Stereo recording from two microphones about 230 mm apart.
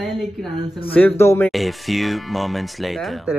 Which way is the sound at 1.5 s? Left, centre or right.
Centre.